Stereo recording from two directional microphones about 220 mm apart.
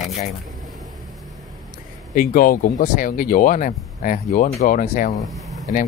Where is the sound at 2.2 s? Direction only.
40° left (ahead or behind).